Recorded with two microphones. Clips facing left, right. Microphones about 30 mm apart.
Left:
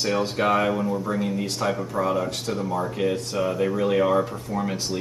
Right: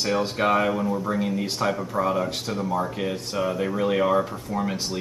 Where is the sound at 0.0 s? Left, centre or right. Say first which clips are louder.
Even; centre.